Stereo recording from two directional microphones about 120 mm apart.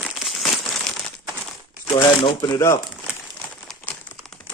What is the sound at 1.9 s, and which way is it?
Speech, 40° left (ahead or behind).